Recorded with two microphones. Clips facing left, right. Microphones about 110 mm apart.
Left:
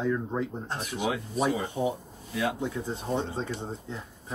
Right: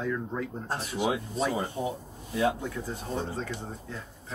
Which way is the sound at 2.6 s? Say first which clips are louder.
Left 3 dB; 25° left (ahead or behind).